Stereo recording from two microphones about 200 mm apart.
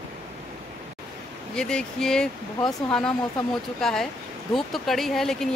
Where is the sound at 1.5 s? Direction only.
5° left (ahead or behind).